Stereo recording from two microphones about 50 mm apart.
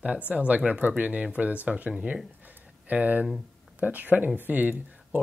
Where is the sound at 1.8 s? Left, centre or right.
Centre.